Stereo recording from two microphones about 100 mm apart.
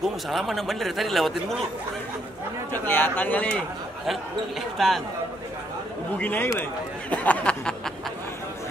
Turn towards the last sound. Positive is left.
turn(degrees=10)  # may be behind; listen again after turning